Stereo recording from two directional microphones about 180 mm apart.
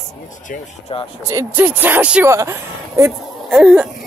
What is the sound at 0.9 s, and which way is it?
Speech, 30° left (ahead or behind).